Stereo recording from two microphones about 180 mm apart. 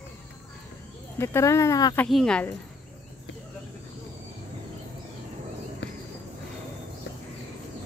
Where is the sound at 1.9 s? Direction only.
Centre (ahead or behind).